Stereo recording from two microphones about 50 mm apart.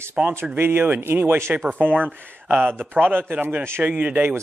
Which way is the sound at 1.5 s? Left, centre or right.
Right.